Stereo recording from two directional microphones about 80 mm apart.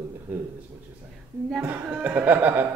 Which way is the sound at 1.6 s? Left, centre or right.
Centre.